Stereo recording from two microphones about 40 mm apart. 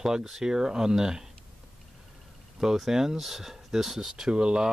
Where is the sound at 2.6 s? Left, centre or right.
Centre.